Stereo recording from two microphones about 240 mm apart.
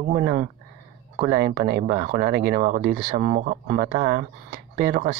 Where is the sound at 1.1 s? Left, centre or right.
Right.